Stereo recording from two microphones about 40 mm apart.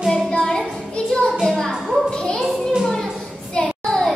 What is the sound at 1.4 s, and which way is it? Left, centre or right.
Music, centre.